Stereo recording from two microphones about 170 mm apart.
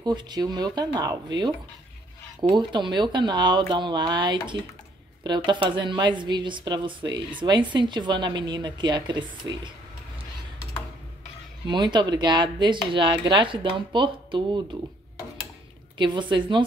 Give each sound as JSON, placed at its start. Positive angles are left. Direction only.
{"t": 0.0, "sound": "a woman's voice", "side_deg": -25}
{"t": 2.5, "sound": "a woman's voice", "side_deg": -25}
{"t": 11.6, "sound": "a woman's voice", "side_deg": -25}
{"t": 16.0, "sound": "a woman's voice", "side_deg": -30}